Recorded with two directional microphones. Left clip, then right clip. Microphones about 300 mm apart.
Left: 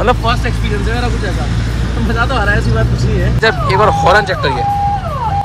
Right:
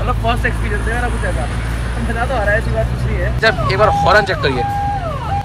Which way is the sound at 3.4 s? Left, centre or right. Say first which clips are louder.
Left 2 dB; centre.